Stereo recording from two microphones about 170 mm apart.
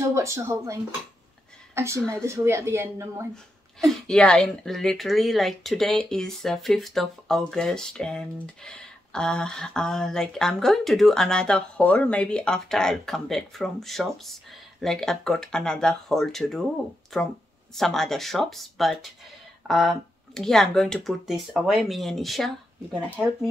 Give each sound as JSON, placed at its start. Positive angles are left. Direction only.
{"t": 0.1, "sound": "speech", "side_deg": -15}
{"t": 1.8, "sound": "speech", "side_deg": -15}
{"t": 3.8, "sound": "speech", "side_deg": 5}